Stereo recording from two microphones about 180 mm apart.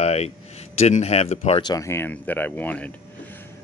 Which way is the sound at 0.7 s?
35° left (ahead or behind).